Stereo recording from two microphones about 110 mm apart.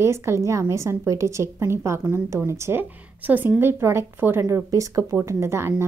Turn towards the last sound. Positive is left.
turn(degrees=-25)  # may be behind; listen again after turning